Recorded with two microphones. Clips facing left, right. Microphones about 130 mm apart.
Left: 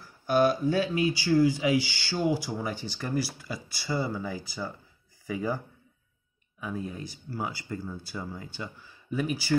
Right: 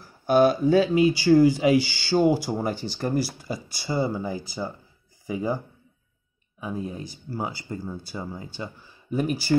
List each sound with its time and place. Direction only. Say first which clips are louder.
0.3 s speech: right 5 dB; 50° right (ahead or behind)
3.5 s speech: right 4 dB; 30° right (ahead or behind)
6.6 s speech: right 3 dB; 25° right (ahead or behind); by 9.6 s 50° right (ahead or behind)